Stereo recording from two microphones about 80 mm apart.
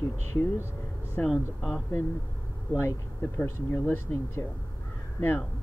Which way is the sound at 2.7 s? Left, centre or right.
Left.